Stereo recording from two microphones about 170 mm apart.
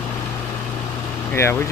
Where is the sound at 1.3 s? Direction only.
15° left (ahead or behind).